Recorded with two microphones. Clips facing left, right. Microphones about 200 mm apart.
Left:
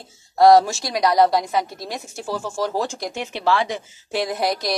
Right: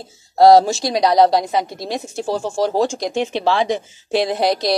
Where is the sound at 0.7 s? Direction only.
20° right (ahead or behind).